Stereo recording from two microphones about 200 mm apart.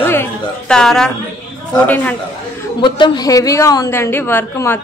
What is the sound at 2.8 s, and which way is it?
A woman's voice, 25° left (ahead or behind).